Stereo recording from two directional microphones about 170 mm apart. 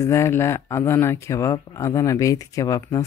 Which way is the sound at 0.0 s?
15° left (ahead or behind).